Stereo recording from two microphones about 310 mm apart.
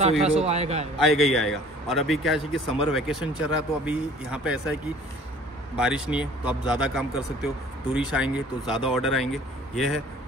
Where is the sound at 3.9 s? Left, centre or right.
Centre.